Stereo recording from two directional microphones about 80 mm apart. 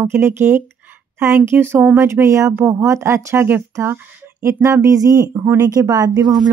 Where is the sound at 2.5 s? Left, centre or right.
Right.